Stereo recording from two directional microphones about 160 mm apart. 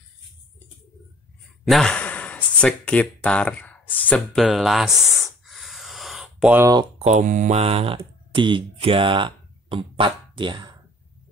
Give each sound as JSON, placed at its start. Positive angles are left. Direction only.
{"t": 1.6, "sound": "a sound", "side_deg": 0}
{"t": 6.5, "sound": "speech", "side_deg": -15}
{"t": 7.0, "sound": "speech", "side_deg": -50}